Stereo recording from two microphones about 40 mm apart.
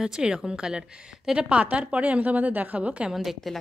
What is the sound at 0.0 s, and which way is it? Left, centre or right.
A woman's voice, centre.